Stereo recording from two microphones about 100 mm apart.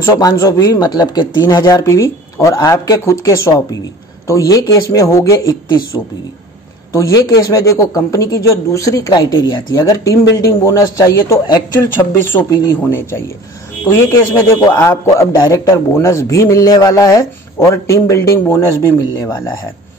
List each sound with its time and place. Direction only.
0.0 s a man's voice: 35° left (ahead or behind)
6.9 s a man's voice: 30° left (ahead or behind)
11.4 s a man's voice: 40° left (ahead or behind)
12.3 s a man's voice: 25° left (ahead or behind)
15.4 s speech: 45° left (ahead or behind)
15.7 s a man's voice: 25° left (ahead or behind); by 19.5 s 45° left (ahead or behind)